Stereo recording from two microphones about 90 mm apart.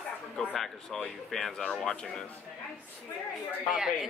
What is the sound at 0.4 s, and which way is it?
A child's voice, 5° left (ahead or behind).